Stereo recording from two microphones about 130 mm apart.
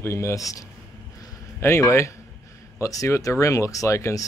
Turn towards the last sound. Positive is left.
turn(degrees=25)  # may be behind; listen again after turning